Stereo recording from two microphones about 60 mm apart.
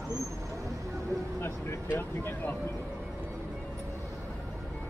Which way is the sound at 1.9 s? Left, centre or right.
Left.